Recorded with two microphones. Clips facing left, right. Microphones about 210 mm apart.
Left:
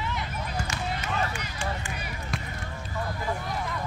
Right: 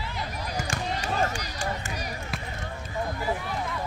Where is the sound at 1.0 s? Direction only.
40° right (ahead or behind).